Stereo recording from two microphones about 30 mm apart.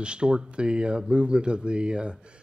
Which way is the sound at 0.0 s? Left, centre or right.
Right.